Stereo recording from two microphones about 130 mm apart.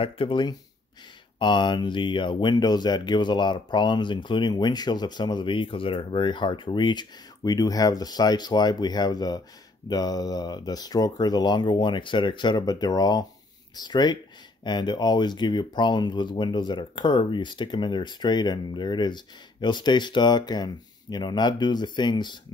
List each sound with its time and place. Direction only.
0.0 s speech: 40° left (ahead or behind)